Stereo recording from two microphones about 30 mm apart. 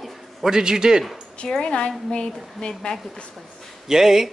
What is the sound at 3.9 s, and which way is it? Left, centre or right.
Speech, centre.